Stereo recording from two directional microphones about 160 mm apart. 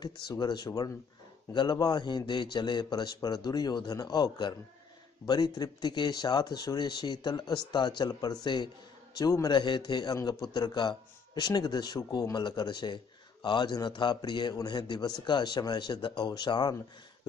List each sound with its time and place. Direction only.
0.3 s a man's voice: 25° left (ahead or behind)